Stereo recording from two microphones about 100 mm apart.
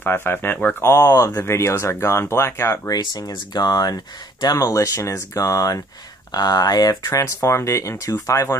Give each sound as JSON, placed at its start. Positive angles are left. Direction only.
{"t": 0.0, "sound": "speech", "side_deg": 20}
{"t": 0.8, "sound": "speech", "side_deg": 35}
{"t": 2.9, "sound": "speech", "side_deg": 40}